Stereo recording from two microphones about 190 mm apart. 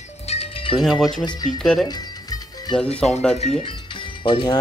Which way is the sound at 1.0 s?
20° left (ahead or behind).